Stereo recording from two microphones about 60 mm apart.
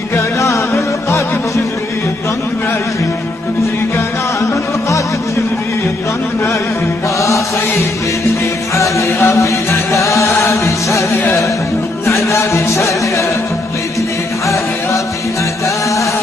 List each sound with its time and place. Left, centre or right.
0.1 s music: left
4.4 s music: left
7.2 s chant: left
8.7 s music: left
11.1 s music: centre
12.1 s music: left
15.6 s music: left